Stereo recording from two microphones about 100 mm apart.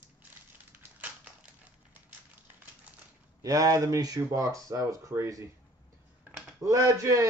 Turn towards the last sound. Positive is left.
turn(degrees=-35)  # may be behind; listen again after turning